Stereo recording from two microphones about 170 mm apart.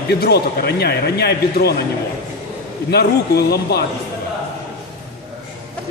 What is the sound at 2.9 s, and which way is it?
Speech, 70° left (ahead or behind).